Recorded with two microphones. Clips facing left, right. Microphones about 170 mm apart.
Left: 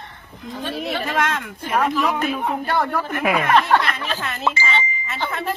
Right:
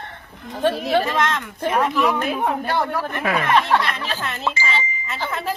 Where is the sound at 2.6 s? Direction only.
Centre (ahead or behind).